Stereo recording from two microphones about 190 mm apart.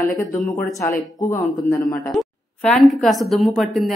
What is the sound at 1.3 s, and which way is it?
Speech, 15° left (ahead or behind).